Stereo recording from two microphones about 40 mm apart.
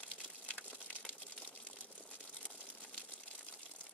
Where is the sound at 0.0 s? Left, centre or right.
Left.